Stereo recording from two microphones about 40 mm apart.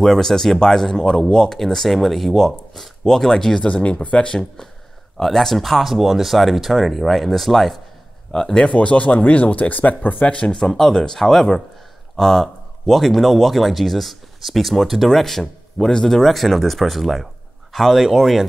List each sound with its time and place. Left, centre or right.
0.0 s speech: centre
3.6 s speech: left
5.1 s speech: centre
8.3 s speech: centre
8.7 s speech: left
10.4 s speech: centre